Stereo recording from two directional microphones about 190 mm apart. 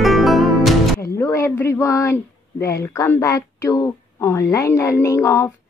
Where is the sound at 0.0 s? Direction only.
Centre (ahead or behind).